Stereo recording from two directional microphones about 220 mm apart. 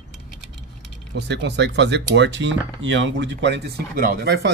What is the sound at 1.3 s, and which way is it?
Speech, 50° right (ahead or behind).